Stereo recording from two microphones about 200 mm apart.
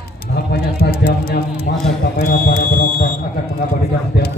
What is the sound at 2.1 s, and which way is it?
Fire alarm, 45° left (ahead or behind).